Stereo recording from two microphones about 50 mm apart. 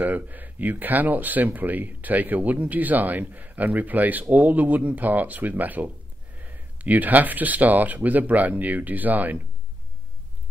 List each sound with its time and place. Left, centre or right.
0.0 s speech: right